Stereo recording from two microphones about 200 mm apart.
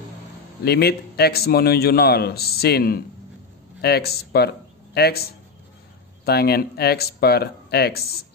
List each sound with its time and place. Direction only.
0.7 s a man's voice: 55° left (ahead or behind)